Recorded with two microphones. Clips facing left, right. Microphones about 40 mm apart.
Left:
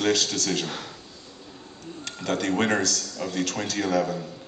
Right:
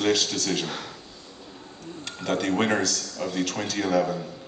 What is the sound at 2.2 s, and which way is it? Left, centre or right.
A man's voice, centre.